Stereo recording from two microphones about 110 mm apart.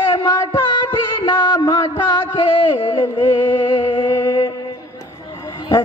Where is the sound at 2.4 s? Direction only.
55° left (ahead or behind).